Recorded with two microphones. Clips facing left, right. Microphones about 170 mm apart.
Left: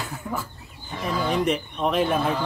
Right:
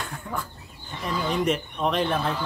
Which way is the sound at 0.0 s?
5° left (ahead or behind).